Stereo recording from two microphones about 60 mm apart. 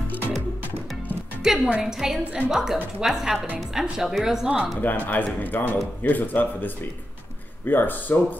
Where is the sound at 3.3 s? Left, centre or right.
Right.